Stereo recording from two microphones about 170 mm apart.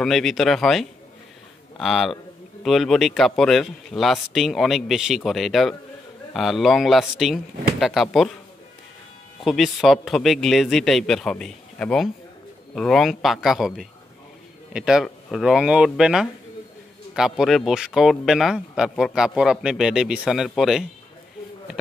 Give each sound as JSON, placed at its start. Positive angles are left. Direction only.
{"t": 0.0, "sound": "speech", "side_deg": 0}
{"t": 9.4, "sound": "speech", "side_deg": 0}